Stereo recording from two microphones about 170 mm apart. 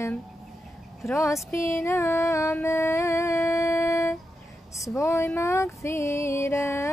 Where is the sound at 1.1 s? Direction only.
15° left (ahead or behind).